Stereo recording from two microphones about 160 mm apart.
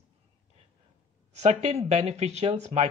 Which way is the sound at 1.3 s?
45° right (ahead or behind).